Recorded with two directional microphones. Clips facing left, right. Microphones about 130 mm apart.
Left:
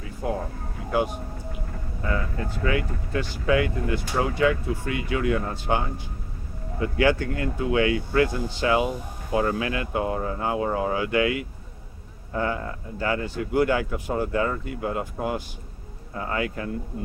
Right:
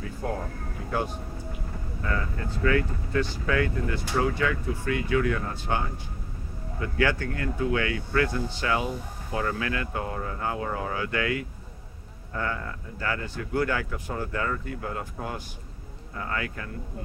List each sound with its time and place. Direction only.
0.2 s speech: 5° left (ahead or behind)
2.6 s speech: 15° left (ahead or behind)